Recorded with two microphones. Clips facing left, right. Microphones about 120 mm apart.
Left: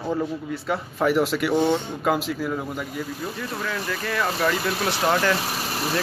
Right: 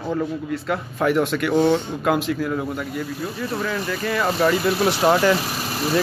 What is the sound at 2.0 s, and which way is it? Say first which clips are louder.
Speech: right 3 dB; centre (ahead or behind).